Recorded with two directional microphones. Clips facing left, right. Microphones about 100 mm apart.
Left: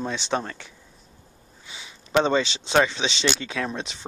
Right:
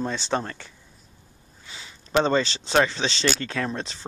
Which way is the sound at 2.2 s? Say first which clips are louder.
Even; 15° left (ahead or behind).